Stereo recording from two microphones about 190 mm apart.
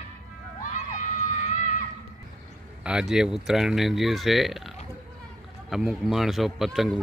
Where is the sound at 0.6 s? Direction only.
40° left (ahead or behind).